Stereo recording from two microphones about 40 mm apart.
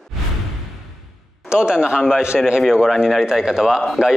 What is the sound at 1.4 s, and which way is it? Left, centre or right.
Speech, right.